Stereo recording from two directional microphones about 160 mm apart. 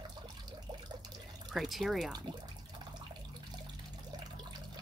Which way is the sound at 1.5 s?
Centre (ahead or behind).